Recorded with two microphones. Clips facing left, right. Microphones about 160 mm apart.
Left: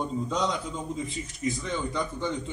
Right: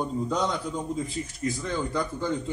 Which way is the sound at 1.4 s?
15° left (ahead or behind).